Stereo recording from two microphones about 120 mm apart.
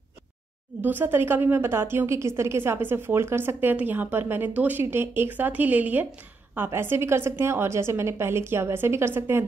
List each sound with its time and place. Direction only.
0.8 s a woman's voice: 15° right (ahead or behind)